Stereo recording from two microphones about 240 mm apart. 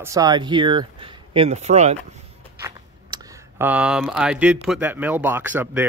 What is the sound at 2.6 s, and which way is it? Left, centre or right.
Speech, centre.